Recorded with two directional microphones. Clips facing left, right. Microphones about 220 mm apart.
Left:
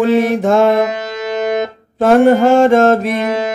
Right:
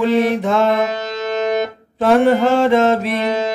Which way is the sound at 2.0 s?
45° left (ahead or behind).